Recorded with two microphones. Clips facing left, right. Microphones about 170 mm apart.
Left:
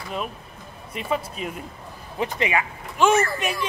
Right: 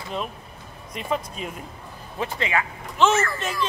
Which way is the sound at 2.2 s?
15° left (ahead or behind).